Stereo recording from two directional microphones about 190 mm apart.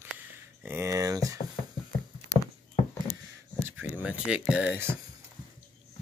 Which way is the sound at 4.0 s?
5° right (ahead or behind).